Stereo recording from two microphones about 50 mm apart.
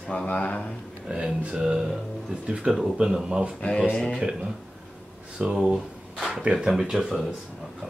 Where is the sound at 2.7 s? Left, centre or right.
Centre.